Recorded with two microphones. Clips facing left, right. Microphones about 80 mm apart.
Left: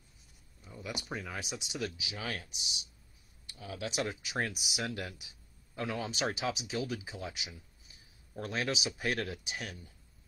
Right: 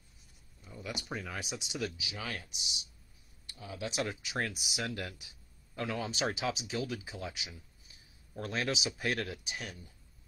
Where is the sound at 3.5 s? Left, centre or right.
Right.